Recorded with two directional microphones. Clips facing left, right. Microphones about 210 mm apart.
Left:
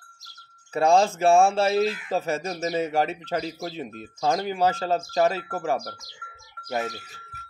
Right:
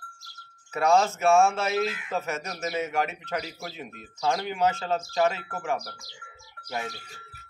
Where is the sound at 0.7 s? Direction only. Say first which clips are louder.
Left 3 dB; 30° left (ahead or behind).